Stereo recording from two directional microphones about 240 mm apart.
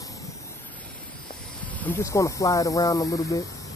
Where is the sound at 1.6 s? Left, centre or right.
Centre.